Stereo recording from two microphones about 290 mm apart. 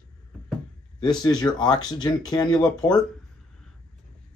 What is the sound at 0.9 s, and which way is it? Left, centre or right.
Speech, centre.